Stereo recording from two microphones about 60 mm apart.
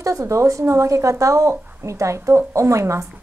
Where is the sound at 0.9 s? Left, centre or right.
Right.